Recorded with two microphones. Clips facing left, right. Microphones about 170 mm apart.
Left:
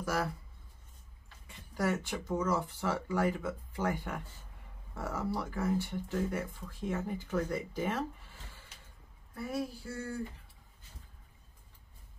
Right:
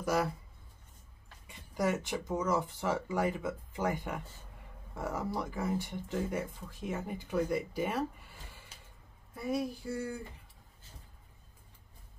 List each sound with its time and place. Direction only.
0.0 s speech: 15° right (ahead or behind)
1.8 s speech: 15° right (ahead or behind)
9.3 s speech: 15° right (ahead or behind)